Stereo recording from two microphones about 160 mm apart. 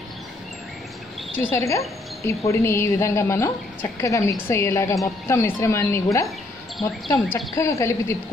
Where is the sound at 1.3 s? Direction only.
20° left (ahead or behind).